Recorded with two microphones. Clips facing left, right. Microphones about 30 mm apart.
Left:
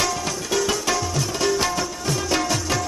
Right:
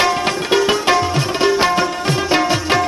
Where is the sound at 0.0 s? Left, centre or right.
Right.